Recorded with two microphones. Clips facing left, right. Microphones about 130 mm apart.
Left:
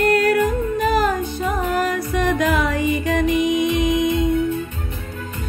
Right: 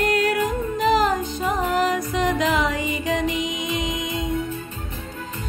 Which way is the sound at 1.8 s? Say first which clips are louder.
Left 1 dB; 15° right (ahead or behind).